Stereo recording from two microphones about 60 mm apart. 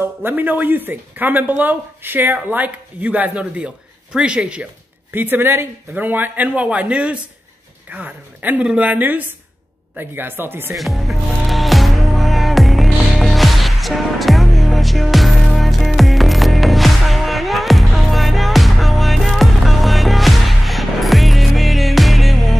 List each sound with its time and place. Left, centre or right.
0.0 s speech: right; by 4.6 s centre
5.1 s a woman's voice: right
10.7 s music: centre